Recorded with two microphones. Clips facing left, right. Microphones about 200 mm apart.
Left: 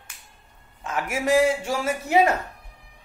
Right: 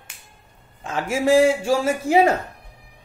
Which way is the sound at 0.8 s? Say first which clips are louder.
Right 4 dB; 30° right (ahead or behind).